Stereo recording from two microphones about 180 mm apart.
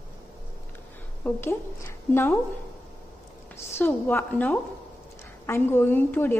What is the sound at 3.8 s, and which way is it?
A woman's voice, 15° left (ahead or behind).